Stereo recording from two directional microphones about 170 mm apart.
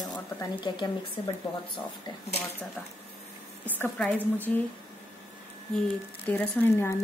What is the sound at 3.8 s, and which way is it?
Speech, 10° left (ahead or behind).